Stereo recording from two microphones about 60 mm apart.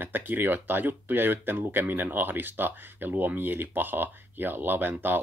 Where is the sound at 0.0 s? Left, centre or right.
Right.